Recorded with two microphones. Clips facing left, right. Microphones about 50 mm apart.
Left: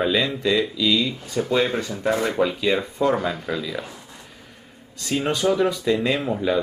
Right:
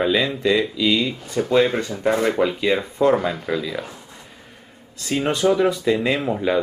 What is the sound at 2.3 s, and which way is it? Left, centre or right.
Speech, centre.